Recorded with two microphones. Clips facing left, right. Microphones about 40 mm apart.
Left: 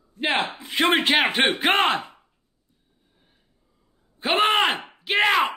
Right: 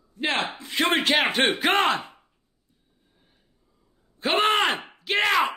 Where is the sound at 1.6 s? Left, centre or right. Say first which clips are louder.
Left 2 dB; left.